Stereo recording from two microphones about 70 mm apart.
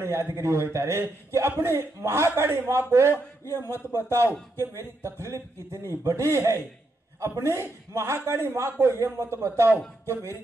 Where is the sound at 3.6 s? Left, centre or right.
Left.